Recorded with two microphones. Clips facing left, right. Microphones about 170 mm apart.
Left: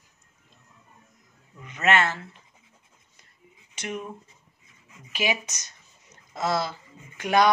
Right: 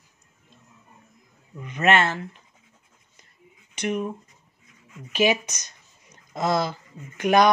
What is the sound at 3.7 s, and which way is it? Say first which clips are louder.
Speech: right 7 dB; 15° right (ahead or behind).